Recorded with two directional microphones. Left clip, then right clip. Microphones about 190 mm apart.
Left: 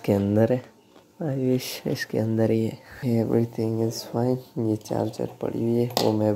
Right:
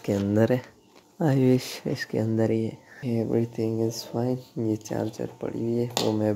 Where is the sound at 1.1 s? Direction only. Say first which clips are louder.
Right 4 dB; 25° right (ahead or behind).